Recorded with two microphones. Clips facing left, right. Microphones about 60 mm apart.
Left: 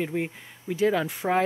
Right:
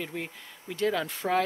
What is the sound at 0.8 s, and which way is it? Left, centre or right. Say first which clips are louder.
Speech: left 4 dB; centre.